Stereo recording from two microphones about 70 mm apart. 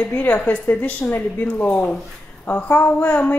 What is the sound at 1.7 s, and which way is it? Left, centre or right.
A woman's voice, centre.